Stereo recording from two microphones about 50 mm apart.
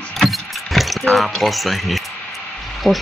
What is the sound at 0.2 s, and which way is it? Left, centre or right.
Vehicle, centre.